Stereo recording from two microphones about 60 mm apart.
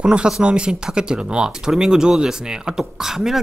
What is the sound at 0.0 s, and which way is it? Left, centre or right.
Speech, centre.